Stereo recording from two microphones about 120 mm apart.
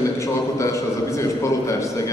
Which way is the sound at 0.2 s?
25° left (ahead or behind).